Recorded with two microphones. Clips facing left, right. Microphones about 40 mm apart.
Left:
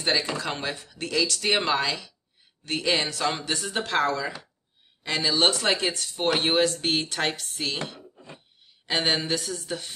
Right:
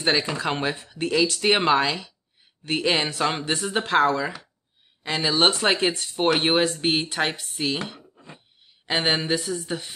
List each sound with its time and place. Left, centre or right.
0.0 s speech: right